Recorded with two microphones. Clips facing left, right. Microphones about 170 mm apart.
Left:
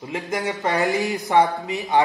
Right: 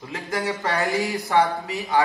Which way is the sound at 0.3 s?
20° left (ahead or behind).